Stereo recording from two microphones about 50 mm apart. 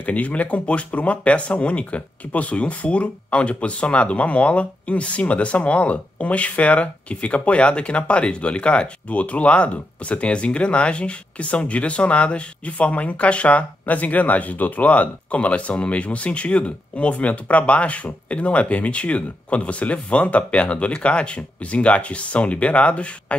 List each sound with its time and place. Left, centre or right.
0.0 s speech: left